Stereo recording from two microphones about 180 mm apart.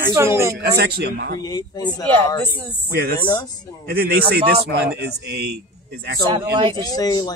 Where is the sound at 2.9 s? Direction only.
60° right (ahead or behind).